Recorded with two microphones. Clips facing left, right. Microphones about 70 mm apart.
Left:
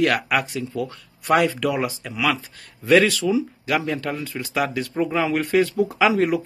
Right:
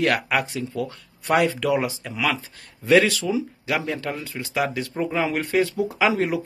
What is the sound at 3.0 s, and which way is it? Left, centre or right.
Speech, right.